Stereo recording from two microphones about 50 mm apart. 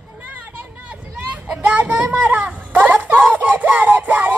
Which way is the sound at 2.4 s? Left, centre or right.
Right.